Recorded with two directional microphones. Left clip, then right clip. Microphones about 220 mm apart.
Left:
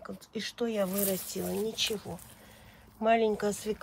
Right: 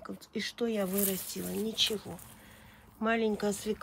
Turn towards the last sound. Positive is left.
turn(degrees=0)  # may be behind; listen again after turning